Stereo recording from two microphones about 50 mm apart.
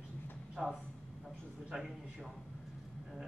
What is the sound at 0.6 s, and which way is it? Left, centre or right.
Speech, centre.